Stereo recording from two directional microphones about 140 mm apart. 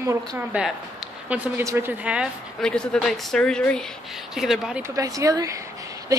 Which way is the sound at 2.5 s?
5° left (ahead or behind).